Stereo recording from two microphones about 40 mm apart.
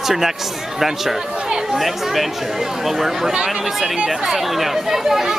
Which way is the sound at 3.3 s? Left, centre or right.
Centre.